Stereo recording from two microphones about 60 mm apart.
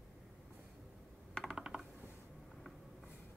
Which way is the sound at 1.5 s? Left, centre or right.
Centre.